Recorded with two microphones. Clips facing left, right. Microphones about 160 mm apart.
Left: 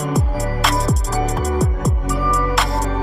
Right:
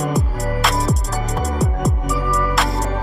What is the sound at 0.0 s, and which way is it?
Music, centre (ahead or behind).